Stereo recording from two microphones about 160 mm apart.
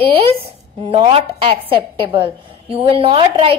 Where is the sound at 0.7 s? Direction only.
35° right (ahead or behind).